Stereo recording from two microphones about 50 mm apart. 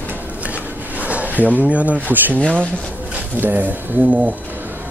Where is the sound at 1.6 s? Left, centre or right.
Right.